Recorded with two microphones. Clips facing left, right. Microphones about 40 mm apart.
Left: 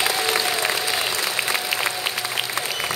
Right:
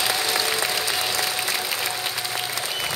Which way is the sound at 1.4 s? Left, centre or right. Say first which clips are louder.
Left 3 dB; left.